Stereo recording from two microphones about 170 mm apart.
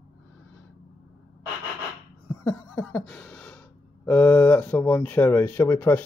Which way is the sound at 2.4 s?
10° left (ahead or behind).